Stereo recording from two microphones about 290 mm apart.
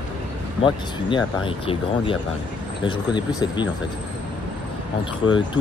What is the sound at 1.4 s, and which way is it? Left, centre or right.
Speech, centre.